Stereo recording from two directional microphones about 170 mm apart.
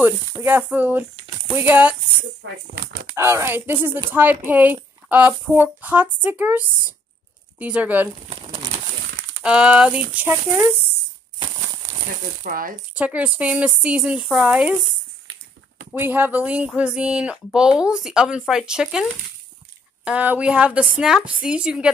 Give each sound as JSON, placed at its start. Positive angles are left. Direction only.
{"t": 0.0, "sound": "speech", "side_deg": -15}
{"t": 3.2, "sound": "speech", "side_deg": -15}
{"t": 9.4, "sound": "speech", "side_deg": -5}
{"t": 11.3, "sound": "a sound", "side_deg": -25}
{"t": 12.4, "sound": "rattle", "side_deg": -55}
{"t": 12.9, "sound": "speech", "side_deg": -10}
{"t": 15.9, "sound": "speech", "side_deg": -10}